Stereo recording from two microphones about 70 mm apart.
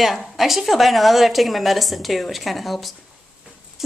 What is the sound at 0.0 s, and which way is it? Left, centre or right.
A woman's voice, centre.